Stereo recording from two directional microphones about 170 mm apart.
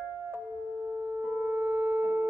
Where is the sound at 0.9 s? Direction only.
10° right (ahead or behind).